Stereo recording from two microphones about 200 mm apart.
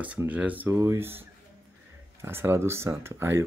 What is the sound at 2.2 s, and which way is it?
Speech, 10° right (ahead or behind).